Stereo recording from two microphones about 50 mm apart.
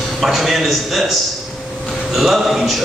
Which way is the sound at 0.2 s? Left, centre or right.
Centre.